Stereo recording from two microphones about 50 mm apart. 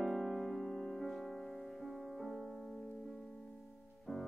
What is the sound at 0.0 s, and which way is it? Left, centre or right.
Music, centre.